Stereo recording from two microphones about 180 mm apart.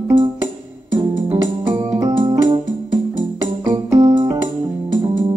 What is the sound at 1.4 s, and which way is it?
Keyboard, 20° right (ahead or behind).